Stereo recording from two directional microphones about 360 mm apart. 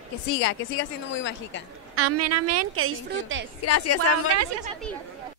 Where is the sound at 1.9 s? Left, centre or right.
Right.